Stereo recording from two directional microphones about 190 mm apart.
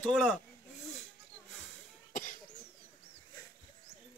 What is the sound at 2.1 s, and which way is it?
Cough, 45° left (ahead or behind).